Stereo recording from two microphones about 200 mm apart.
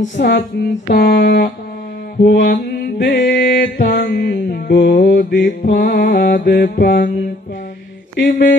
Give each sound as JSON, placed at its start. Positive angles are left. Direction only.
{"t": 0.2, "sound": "mantra", "side_deg": 55}
{"t": 8.2, "sound": "mantra", "side_deg": 55}